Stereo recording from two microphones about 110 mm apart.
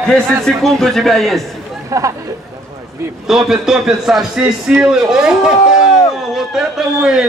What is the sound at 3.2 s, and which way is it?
Speech, 5° right (ahead or behind).